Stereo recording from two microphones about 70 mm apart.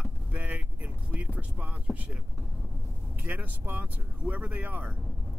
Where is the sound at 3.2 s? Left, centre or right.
Right.